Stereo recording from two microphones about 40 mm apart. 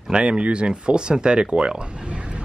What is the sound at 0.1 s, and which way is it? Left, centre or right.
Speech, right.